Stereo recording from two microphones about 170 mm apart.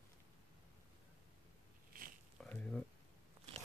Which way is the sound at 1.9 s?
55° right (ahead or behind).